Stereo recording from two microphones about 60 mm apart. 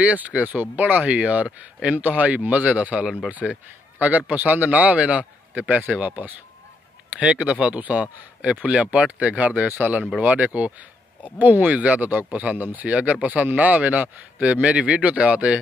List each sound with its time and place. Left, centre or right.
0.0 s speech: right